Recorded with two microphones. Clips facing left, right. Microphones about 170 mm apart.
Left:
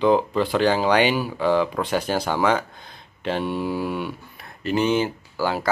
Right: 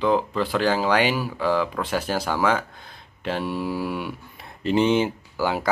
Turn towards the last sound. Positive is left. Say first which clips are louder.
# even
turn(degrees=-15)  # may be behind; listen again after turning